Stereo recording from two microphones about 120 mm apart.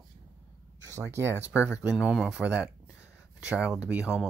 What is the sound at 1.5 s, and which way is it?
Speech, 10° right (ahead or behind).